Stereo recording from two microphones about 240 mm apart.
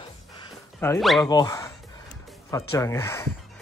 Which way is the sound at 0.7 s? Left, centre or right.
Centre.